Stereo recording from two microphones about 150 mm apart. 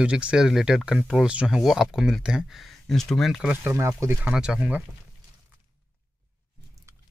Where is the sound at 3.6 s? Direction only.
20° right (ahead or behind).